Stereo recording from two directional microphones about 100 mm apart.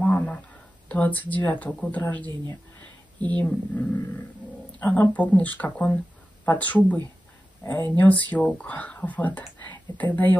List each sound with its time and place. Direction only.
0.0 s a sound: 10° left (ahead or behind)
0.8 s speech: 15° left (ahead or behind)
3.3 s speech: 15° left (ahead or behind)